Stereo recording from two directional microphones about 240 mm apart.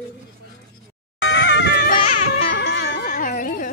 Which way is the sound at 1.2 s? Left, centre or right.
Left.